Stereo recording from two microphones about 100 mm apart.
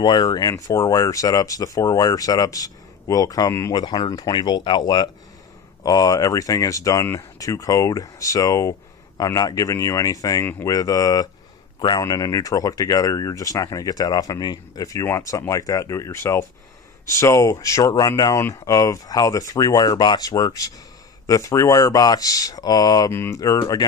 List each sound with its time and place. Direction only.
0.0 s speech: 45° left (ahead or behind)
3.7 s speech: 45° left (ahead or behind)
23.1 s speech: 25° left (ahead or behind)
23.4 s speech: 35° left (ahead or behind)